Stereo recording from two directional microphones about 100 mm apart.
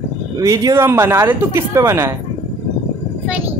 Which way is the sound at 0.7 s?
25° right (ahead or behind).